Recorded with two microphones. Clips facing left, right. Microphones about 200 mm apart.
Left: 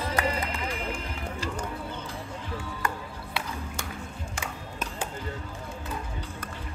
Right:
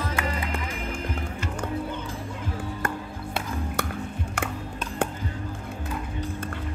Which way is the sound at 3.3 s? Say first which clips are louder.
Right 6 dB; 60° right (ahead or behind).